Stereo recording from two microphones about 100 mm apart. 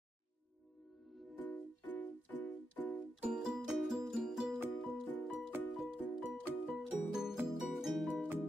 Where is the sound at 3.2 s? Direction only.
5° right (ahead or behind).